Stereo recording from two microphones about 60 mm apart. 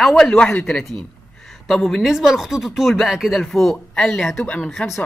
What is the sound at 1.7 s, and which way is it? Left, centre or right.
Speech, centre.